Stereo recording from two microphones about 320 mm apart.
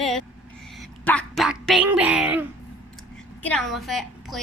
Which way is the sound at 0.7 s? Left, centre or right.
Centre.